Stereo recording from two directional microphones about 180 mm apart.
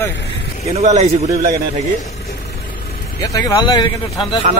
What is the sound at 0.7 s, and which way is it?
Speech, 35° right (ahead or behind).